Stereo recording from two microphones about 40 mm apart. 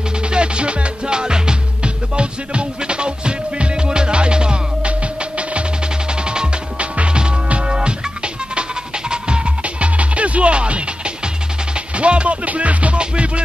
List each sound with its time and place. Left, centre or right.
0.3 s music: right
6.2 s music: right
9.1 s music: right
12.0 s music: right